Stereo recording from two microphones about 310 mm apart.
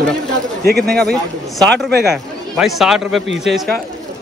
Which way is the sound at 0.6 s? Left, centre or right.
Right.